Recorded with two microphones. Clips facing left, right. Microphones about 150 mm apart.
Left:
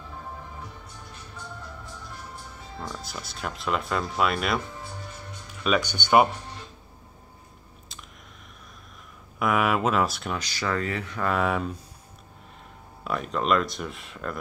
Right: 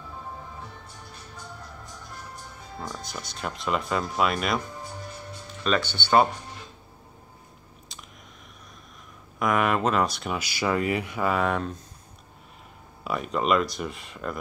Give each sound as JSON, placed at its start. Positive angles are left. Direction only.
{"t": 2.9, "sound": "speech", "side_deg": 5}
{"t": 5.6, "sound": "speech", "side_deg": 10}
{"t": 7.9, "sound": "a sound", "side_deg": 0}
{"t": 9.4, "sound": "speech", "side_deg": 5}
{"t": 11.3, "sound": "speech", "side_deg": 0}
{"t": 13.0, "sound": "speech", "side_deg": 0}